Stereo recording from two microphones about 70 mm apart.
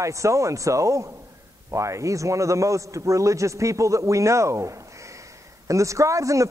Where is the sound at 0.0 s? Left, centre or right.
Right.